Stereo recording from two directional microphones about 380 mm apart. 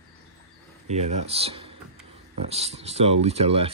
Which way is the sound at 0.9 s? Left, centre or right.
Centre.